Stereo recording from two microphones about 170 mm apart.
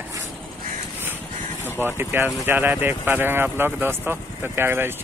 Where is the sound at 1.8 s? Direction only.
15° right (ahead or behind).